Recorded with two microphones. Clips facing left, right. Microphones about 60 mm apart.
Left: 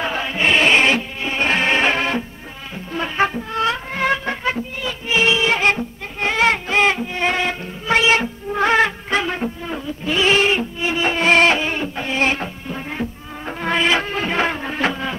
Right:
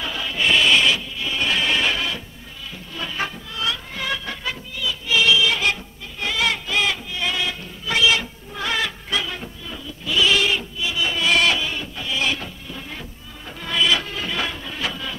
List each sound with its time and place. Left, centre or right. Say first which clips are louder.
0.0 s music: left 4 dB; left